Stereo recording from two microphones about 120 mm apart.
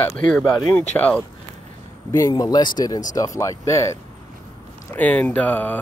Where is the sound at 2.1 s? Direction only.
30° left (ahead or behind).